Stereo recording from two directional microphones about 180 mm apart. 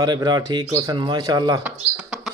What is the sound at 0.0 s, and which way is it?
Speech, 25° right (ahead or behind).